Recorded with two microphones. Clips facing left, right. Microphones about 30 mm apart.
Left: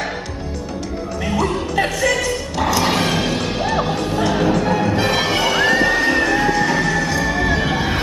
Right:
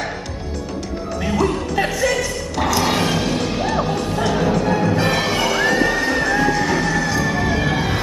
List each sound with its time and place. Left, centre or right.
1.2 s music: centre
5.0 s neigh: centre
6.2 s music: centre